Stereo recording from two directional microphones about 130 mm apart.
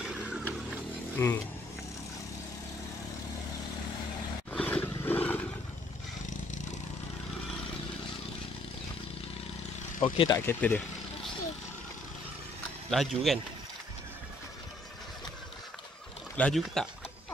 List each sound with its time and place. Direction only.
0.0 s a sound: 5° right (ahead or behind)
1.1 s speech: 15° left (ahead or behind)
4.5 s roar: 10° left (ahead or behind)
10.0 s speech: 30° left (ahead or behind)
10.4 s speech: 15° left (ahead or behind)
12.9 s speech: centre (ahead or behind)
16.3 s speech: 5° left (ahead or behind)